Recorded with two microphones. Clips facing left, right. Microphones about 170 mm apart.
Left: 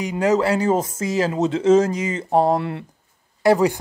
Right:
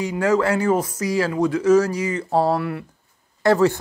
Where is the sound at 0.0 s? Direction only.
20° left (ahead or behind).